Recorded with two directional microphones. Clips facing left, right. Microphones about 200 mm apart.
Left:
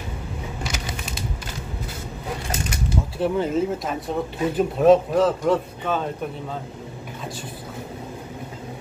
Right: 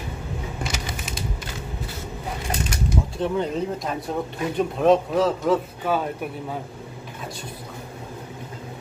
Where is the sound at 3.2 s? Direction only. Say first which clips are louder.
Left 4 dB; 5° left (ahead or behind).